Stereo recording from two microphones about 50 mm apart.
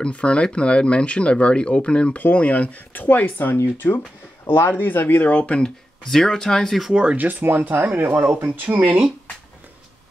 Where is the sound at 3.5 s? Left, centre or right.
Left.